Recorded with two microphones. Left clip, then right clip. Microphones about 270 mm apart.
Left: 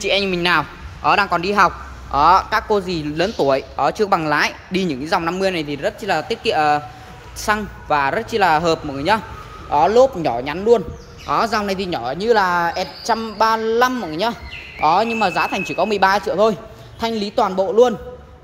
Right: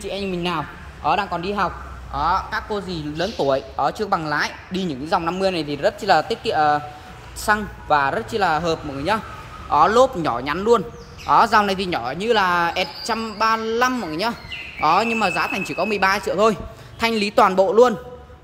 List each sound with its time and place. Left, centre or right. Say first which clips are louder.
0.0 s a man's voice: left 9 dB; left
0.3 s speech: left 7 dB; centre
1.0 s a man's voice: left 5 dB; left
2.1 s a man's voice: left 8 dB; centre